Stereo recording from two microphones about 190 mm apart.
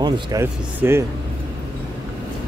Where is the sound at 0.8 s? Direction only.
10° right (ahead or behind).